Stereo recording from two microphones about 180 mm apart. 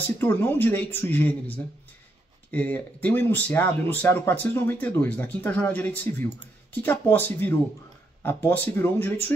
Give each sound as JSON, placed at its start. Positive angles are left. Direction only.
{"t": 0.2, "sound": "speech", "side_deg": 10}
{"t": 2.5, "sound": "speech", "side_deg": 10}